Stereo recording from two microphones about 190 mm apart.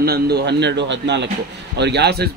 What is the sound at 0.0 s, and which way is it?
A man's voice, 55° right (ahead or behind).